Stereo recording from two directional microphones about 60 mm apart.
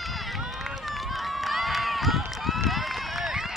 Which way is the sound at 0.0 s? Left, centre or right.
Centre.